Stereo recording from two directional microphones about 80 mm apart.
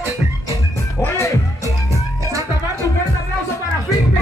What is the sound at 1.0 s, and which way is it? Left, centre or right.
Music, left.